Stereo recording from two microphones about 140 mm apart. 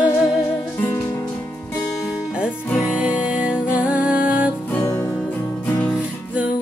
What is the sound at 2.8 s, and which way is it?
Music, 5° right (ahead or behind).